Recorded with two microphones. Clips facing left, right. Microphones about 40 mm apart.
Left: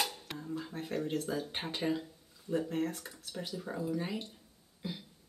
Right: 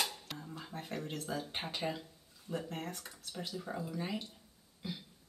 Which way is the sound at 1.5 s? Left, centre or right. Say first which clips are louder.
Left 2 dB; centre.